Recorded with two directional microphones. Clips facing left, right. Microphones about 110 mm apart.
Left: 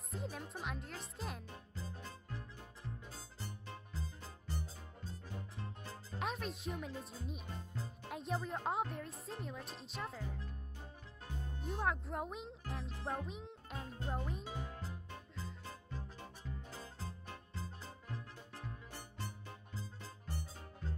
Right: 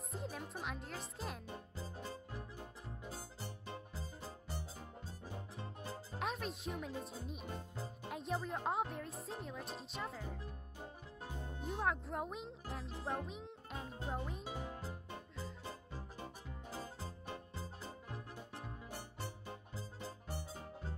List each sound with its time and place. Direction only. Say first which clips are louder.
0.1 s speech: left 1 dB; centre (ahead or behind)
6.1 s a child's voice: left 1 dB; centre (ahead or behind)
11.6 s a child's voice: even; centre (ahead or behind)
16.7 s music: right 2 dB; 20° right (ahead or behind)
19.1 s music: right 2 dB; 15° right (ahead or behind)